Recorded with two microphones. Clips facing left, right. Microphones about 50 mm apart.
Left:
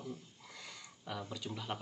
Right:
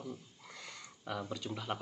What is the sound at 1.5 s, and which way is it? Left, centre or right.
Speech, centre.